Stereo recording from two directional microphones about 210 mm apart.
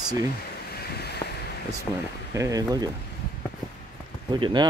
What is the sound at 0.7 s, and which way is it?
Boat, 50° left (ahead or behind).